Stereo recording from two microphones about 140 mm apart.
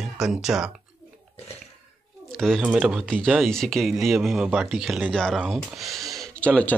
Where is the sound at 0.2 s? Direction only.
5° right (ahead or behind).